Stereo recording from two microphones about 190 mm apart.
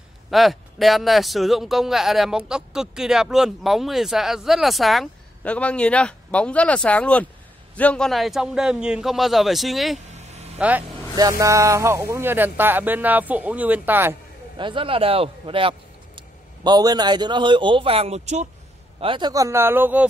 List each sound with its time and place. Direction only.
0.3 s a man's voice: centre (ahead or behind)
9.9 s vehicle: 35° right (ahead or behind)
11.1 s speech: 20° right (ahead or behind)
14.6 s a man's voice: 25° right (ahead or behind)
18.9 s speech: 25° right (ahead or behind); by 20.1 s 10° right (ahead or behind)